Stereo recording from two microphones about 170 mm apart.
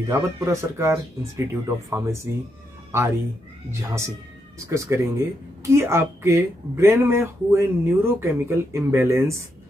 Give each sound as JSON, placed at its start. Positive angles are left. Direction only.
{"t": 0.1, "sound": "speech", "side_deg": -15}
{"t": 4.6, "sound": "speech", "side_deg": -15}